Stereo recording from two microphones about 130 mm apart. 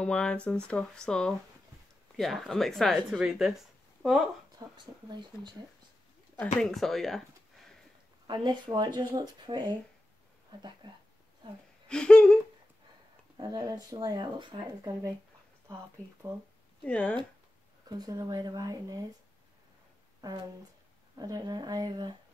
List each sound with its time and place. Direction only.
0.0 s speech: 10° left (ahead or behind)
4.5 s speech: 35° right (ahead or behind)
6.6 s speech: centre (ahead or behind)
8.3 s speech: 35° right (ahead or behind)
11.9 s speech: 5° left (ahead or behind)
13.4 s speech: 30° right (ahead or behind)
15.7 s speech: 20° right (ahead or behind)
16.8 s speech: 10° left (ahead or behind)
17.8 s speech: 30° right (ahead or behind)
20.2 s speech: 30° right (ahead or behind)